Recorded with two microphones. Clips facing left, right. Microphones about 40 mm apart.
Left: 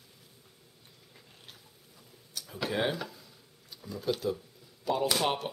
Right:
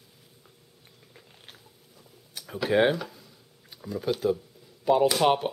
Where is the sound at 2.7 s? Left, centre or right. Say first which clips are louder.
Right 9 dB; right.